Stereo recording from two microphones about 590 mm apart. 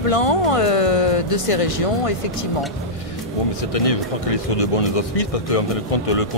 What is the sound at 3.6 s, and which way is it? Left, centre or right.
Speech, left.